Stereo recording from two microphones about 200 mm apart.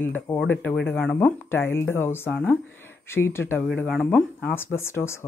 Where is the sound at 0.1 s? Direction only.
10° left (ahead or behind).